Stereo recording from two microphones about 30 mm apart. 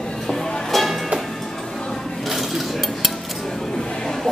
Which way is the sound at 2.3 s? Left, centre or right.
Centre.